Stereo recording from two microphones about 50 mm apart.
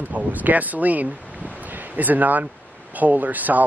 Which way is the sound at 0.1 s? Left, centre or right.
Right.